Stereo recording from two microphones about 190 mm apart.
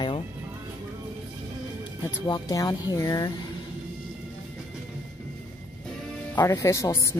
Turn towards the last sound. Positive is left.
turn(degrees=15)  # may be behind; listen again after turning